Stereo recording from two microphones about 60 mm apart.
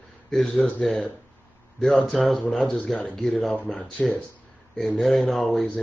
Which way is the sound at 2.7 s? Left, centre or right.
Left.